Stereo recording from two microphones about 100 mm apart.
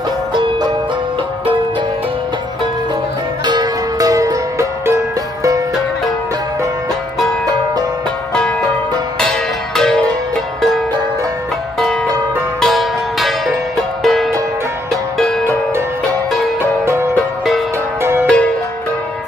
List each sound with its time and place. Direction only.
0.3 s music: 55° right (ahead or behind)
3.4 s music: 40° right (ahead or behind)
9.8 s music: 5° left (ahead or behind)
12.5 s music: centre (ahead or behind)
16.8 s music: 25° right (ahead or behind)
18.2 s music: 10° left (ahead or behind)